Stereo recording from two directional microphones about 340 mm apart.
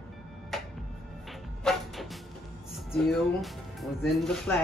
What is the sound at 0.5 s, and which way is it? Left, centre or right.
Music, centre.